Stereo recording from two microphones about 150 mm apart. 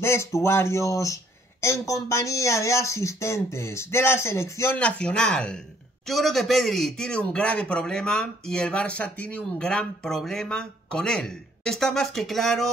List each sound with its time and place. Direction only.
0.0 s speech: 20° left (ahead or behind); by 12.7 s centre (ahead or behind)